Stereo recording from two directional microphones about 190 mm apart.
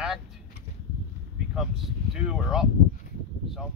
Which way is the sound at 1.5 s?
Centre (ahead or behind).